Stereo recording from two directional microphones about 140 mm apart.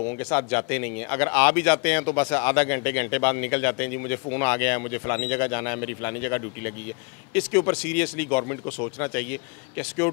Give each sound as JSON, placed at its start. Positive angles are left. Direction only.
{"t": 0.3, "sound": "speech", "side_deg": 20}